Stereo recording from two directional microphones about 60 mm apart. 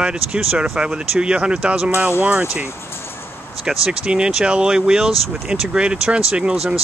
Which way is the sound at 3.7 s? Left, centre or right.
Centre.